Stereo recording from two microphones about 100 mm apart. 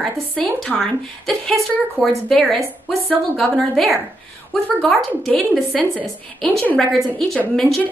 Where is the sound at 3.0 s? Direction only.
15° left (ahead or behind).